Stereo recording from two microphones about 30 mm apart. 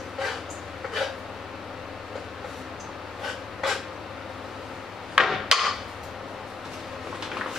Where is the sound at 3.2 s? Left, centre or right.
Centre.